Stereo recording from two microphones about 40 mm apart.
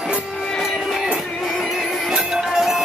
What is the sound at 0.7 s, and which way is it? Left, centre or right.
Music, centre.